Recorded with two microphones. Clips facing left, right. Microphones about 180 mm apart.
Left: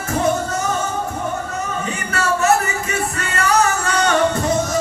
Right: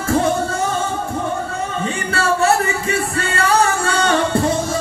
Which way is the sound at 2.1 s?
30° right (ahead or behind).